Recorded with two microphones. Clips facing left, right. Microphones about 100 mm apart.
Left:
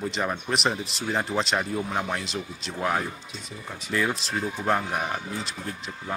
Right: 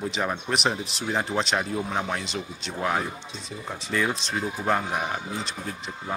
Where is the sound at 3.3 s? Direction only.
30° right (ahead or behind).